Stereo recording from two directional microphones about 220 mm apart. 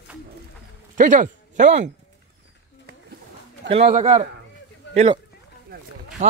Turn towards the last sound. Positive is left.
turn(degrees=-30)  # may be behind; listen again after turning